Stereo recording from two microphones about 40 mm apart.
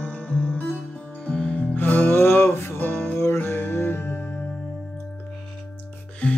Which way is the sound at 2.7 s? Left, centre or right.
Left.